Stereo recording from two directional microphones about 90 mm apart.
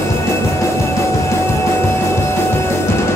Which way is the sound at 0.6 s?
30° left (ahead or behind).